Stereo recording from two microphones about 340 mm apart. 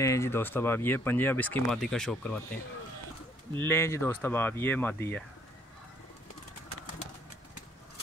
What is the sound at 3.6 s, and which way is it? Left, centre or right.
Speech, centre.